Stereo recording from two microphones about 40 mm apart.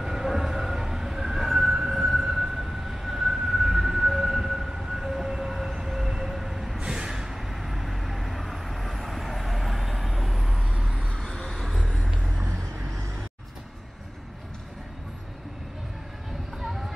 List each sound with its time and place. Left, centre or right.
0.0 s emergency vehicle: centre
6.9 s vehicle: centre
11.1 s a sound: centre
12.2 s vehicle: right